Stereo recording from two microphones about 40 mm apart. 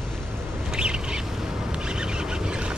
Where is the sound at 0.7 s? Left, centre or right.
Right.